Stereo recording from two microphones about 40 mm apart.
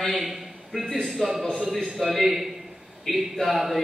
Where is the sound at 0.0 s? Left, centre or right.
Centre.